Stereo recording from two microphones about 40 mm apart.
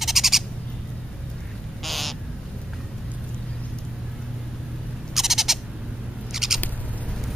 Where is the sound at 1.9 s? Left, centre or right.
Centre.